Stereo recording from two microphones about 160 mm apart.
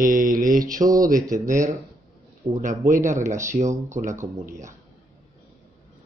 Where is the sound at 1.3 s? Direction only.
50° right (ahead or behind).